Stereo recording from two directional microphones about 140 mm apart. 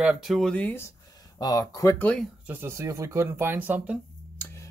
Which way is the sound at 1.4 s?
30° left (ahead or behind).